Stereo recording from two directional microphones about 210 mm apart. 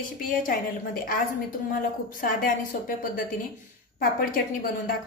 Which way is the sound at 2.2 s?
40° left (ahead or behind).